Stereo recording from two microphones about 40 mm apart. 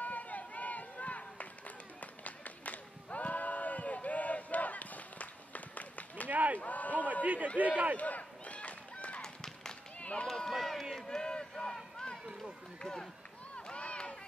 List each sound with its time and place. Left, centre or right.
0.0 s run: left
2.0 s a sound: left
6.2 s run: right
6.6 s a sound: left
7.5 s a man's voice: right
8.0 s run: left
9.2 s run: centre
9.9 s run: left
10.2 s run: centre
10.5 s run: centre
11.1 s run: left
13.6 s run: left